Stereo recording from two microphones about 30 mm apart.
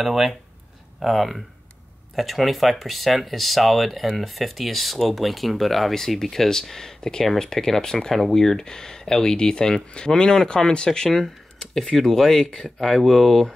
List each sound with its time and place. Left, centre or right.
0.0 s speech: centre
7.0 s speech: left
12.6 s speech: centre